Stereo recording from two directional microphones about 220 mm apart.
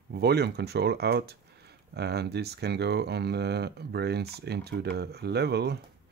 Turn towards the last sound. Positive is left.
turn(degrees=-50)  # may be behind; listen again after turning